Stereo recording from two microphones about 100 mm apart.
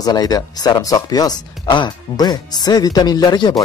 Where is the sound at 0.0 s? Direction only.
40° left (ahead or behind).